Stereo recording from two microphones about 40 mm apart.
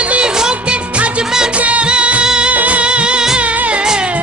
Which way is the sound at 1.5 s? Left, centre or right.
Right.